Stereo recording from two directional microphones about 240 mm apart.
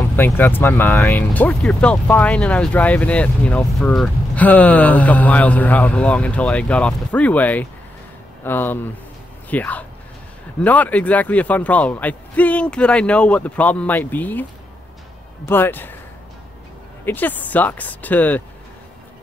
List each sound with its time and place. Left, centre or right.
0.1 s a man's voice: centre
15.4 s a man's voice: centre
17.0 s a man's voice: centre